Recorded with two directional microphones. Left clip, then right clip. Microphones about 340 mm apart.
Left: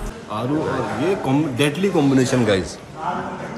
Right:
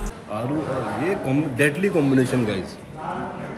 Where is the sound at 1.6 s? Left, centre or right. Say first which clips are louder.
Right 1 dB; centre.